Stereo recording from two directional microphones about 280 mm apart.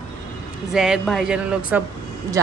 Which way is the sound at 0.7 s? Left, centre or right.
Centre.